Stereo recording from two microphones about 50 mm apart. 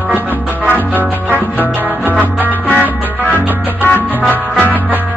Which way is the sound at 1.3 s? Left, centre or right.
Left.